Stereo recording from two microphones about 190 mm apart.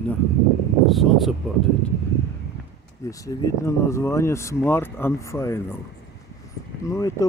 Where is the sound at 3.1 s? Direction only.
15° left (ahead or behind).